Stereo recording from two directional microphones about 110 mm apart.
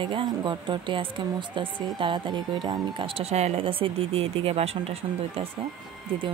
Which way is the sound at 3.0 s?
65° right (ahead or behind).